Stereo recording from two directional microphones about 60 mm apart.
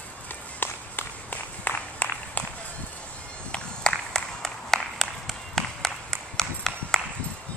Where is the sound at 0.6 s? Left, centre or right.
Left.